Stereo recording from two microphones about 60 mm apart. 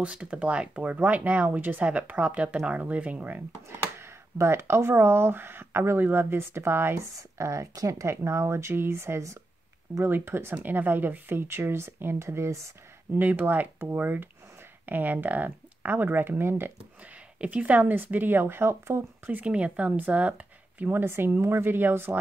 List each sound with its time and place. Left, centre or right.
0.0 s speech: centre
4.0 s speech: right
7.0 s speech: right
10.0 s speech: right
10.5 s speech: right
13.2 s speech: right
17.4 s speech: right
19.4 s speech: right